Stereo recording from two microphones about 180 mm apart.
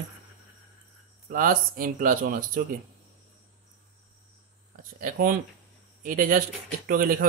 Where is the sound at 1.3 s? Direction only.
50° right (ahead or behind).